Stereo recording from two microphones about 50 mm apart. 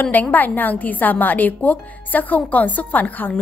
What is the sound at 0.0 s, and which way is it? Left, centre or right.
A woman's voice, left.